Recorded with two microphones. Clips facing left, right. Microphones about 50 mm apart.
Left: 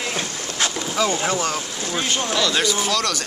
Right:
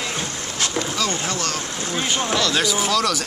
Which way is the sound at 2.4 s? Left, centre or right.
Centre.